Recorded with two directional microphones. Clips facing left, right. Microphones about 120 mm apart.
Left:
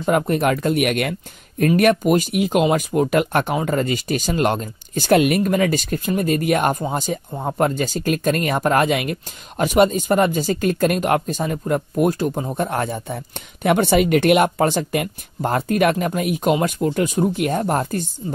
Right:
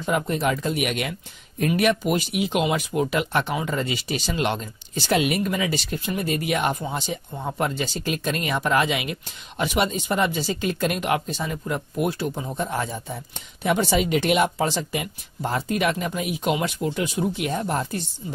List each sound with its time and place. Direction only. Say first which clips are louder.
0.0 s speech: left 5 dB; 55° left (ahead or behind)